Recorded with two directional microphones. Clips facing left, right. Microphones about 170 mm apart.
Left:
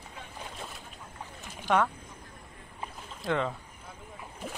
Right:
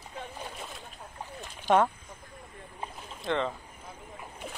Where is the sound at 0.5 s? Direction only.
Centre (ahead or behind).